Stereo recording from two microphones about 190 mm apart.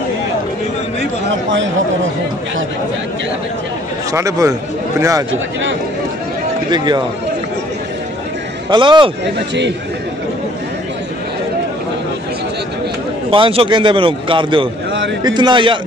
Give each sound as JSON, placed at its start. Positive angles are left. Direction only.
{"t": 4.1, "sound": "a man's voice", "side_deg": -15}
{"t": 6.7, "sound": "a man's voice", "side_deg": -25}
{"t": 8.6, "sound": "a man's voice", "side_deg": -25}
{"t": 9.2, "sound": "a man's voice", "side_deg": -65}
{"t": 13.3, "sound": "a man's voice", "side_deg": -30}